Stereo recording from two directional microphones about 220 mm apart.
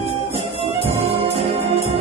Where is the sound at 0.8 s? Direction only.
30° right (ahead or behind).